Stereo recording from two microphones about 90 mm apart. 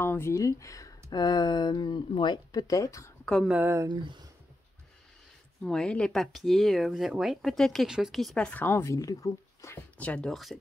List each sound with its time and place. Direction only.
0.0 s speech: 30° left (ahead or behind)
1.1 s speech: 50° left (ahead or behind)
2.6 s speech: 35° left (ahead or behind)
3.4 s speech: 20° right (ahead or behind)
5.6 s speech: 10° left (ahead or behind)
8.5 s speech: 20° left (ahead or behind)
9.9 s speech: 15° left (ahead or behind)
10.3 s speech: centre (ahead or behind)